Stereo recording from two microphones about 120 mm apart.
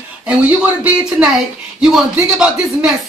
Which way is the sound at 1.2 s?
10° right (ahead or behind).